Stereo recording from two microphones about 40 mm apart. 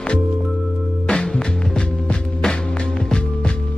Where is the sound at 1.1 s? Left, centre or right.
Centre.